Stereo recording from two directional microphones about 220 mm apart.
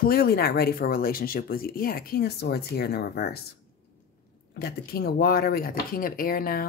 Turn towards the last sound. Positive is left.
turn(degrees=40)  # may be behind; listen again after turning